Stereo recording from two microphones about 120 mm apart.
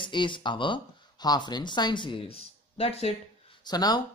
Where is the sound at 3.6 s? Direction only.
35° left (ahead or behind).